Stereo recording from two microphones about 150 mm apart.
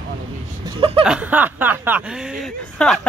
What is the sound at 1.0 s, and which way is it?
Speech, 10° right (ahead or behind).